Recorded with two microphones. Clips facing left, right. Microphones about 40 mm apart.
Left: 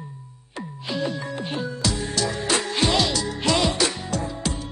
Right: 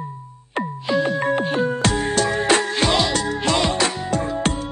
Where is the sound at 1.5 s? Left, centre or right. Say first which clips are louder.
Right 7 dB; right.